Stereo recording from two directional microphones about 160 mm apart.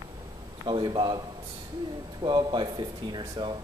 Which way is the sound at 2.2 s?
30° right (ahead or behind).